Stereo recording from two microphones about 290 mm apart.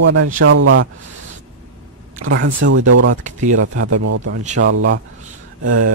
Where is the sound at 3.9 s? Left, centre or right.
Right.